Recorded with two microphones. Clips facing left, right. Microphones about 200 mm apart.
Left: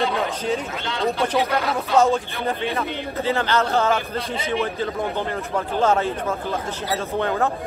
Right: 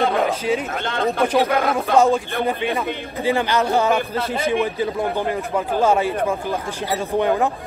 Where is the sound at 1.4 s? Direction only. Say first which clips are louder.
Right 4 dB; 50° right (ahead or behind).